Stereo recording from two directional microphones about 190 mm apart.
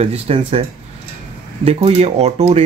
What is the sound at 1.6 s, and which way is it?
Speech, 35° right (ahead or behind).